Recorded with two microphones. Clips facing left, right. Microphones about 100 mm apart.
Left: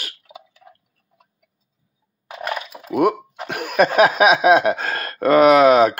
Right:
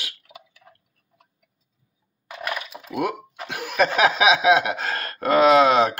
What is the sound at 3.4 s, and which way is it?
Chuckle, 55° left (ahead or behind).